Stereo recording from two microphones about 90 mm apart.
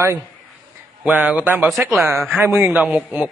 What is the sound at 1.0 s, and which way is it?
A man's voice, 15° right (ahead or behind).